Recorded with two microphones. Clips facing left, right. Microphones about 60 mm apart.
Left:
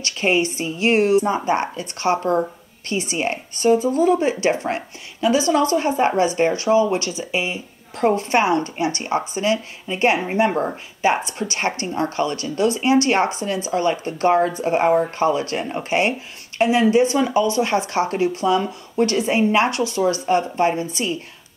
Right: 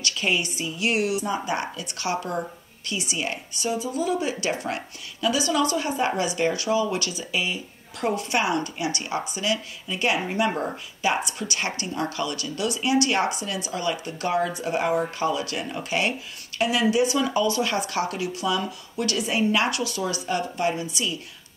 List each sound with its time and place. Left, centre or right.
0.0 s speech: left